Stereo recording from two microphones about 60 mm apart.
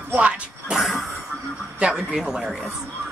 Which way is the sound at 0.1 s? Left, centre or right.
Centre.